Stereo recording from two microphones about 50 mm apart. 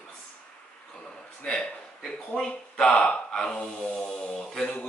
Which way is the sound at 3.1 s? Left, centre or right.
Centre.